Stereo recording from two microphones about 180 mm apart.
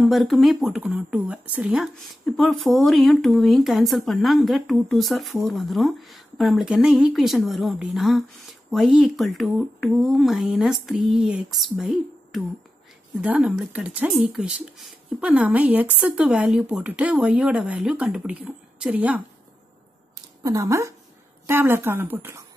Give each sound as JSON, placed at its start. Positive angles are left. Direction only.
{"t": 0.0, "sound": "speech", "side_deg": 0}
{"t": 20.4, "sound": "speech", "side_deg": -20}